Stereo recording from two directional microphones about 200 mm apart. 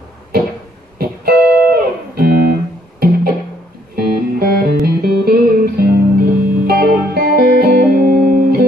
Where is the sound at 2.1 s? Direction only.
50° right (ahead or behind).